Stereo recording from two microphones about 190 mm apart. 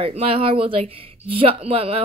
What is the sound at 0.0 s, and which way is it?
Speech, 30° right (ahead or behind).